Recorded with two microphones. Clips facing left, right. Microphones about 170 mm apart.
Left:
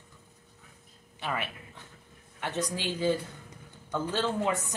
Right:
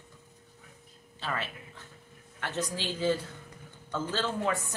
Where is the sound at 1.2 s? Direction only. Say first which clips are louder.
Left 1 dB; 15° left (ahead or behind).